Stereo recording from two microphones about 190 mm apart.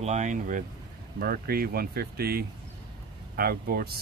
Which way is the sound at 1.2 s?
50° right (ahead or behind).